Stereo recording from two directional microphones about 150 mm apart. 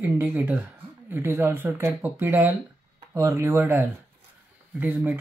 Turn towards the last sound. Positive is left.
turn(degrees=-10)  # may be behind; listen again after turning